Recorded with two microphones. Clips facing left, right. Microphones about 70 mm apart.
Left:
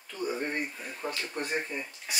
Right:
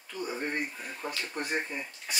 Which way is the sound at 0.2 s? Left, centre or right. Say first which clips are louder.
Left 2 dB; centre.